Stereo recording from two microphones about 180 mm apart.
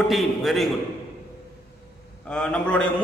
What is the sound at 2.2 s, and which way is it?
Speech, 5° left (ahead or behind).